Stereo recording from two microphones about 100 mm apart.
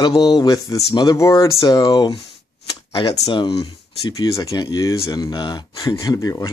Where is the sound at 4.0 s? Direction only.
35° left (ahead or behind).